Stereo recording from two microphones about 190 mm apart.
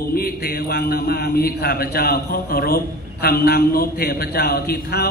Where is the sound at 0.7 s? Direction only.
55° left (ahead or behind).